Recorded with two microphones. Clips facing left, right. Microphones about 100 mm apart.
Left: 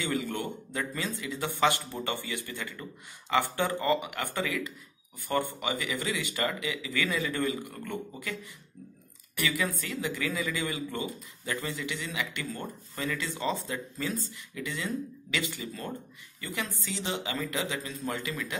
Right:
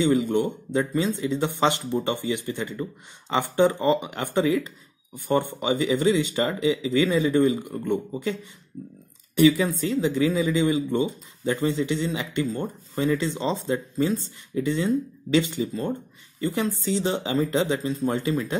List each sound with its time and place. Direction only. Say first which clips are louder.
0.0 s speech: right 11 dB; 20° right (ahead or behind)